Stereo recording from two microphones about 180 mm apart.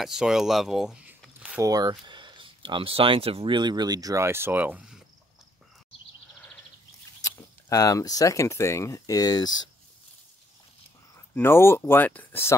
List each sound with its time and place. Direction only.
0.0 s speech: 5° right (ahead or behind)
1.6 s speech: 20° right (ahead or behind)
7.2 s speech: 20° left (ahead or behind)
11.1 s speech: 15° left (ahead or behind)